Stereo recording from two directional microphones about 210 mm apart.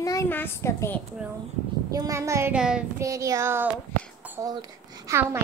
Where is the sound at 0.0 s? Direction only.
15° left (ahead or behind).